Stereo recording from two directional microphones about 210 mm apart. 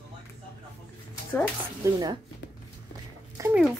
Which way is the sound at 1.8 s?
20° right (ahead or behind).